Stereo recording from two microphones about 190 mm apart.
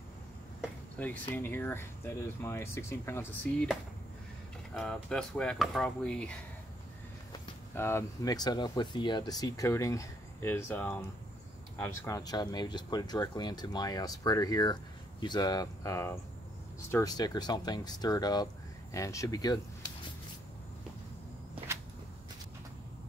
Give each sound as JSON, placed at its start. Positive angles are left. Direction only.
{"t": 1.0, "sound": "speech", "side_deg": 5}
{"t": 4.7, "sound": "speech", "side_deg": 5}
{"t": 7.3, "sound": "speech", "side_deg": 15}